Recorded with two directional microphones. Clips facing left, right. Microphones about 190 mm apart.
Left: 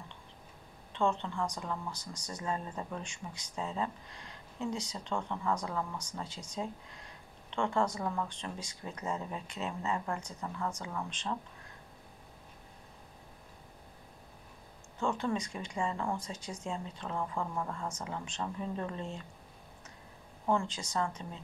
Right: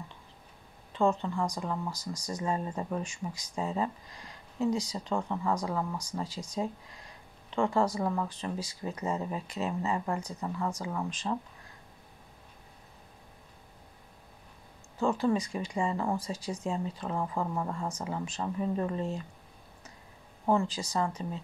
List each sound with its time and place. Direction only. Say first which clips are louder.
0.9 s speech: right 4 dB; 5° right (ahead or behind)
7.5 s speech: right 4 dB; 5° right (ahead or behind)
9.9 s speech: right 4 dB; 20° right (ahead or behind)
15.0 s speech: right 5 dB; 5° right (ahead or behind)
17.2 s speech: right 3 dB; 20° right (ahead or behind)
17.7 s speech: right 4 dB; 10° right (ahead or behind)
20.5 s speech: right 4 dB; 10° right (ahead or behind)